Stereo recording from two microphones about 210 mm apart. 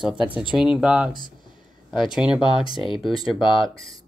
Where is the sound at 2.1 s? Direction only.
5° right (ahead or behind).